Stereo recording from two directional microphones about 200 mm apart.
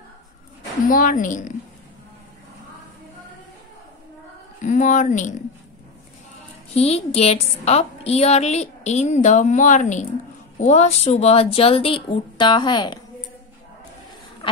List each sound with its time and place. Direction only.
0.8 s a woman's voice: 45° left (ahead or behind)
4.6 s a woman's voice: 40° left (ahead or behind)
6.7 s a woman's voice: 30° left (ahead or behind)
14.4 s a sound: 25° left (ahead or behind)